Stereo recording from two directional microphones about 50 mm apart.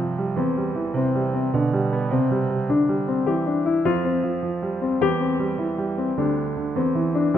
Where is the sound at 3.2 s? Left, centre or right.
Centre.